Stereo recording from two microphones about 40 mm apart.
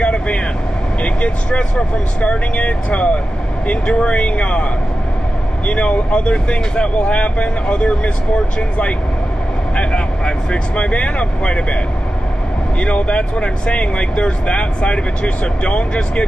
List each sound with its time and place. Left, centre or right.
0.0 s vehicle: left
1.0 s speech: left
5.7 s speech: left
12.8 s speech: left